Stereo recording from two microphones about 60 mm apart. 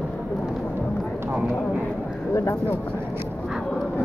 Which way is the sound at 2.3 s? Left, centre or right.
Left.